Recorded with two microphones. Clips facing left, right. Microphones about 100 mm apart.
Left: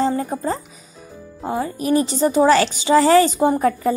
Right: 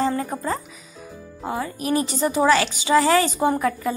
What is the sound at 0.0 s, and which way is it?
Music, 30° left (ahead or behind).